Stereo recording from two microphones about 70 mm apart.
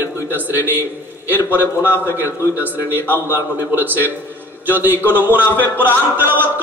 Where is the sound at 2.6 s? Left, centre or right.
Right.